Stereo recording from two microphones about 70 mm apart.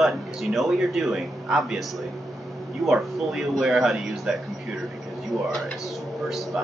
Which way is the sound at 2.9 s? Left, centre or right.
Centre.